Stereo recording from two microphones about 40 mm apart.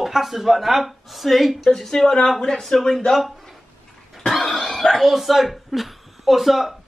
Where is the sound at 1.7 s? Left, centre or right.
Centre.